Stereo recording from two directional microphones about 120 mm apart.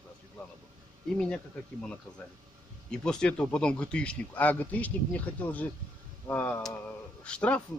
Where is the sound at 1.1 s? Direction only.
10° left (ahead or behind).